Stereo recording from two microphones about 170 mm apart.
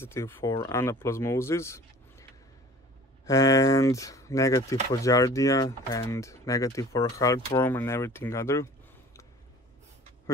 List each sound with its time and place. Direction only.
0.0 s speech: 15° left (ahead or behind)
3.3 s speech: 20° left (ahead or behind)